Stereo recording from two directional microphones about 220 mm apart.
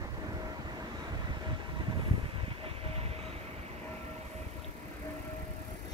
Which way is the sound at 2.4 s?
25° right (ahead or behind).